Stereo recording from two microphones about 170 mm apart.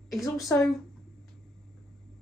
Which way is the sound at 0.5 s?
10° left (ahead or behind).